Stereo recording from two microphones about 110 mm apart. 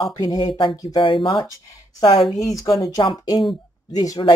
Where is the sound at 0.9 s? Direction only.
50° left (ahead or behind).